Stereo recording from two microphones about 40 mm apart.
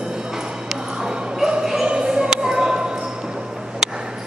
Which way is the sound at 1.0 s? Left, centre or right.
Centre.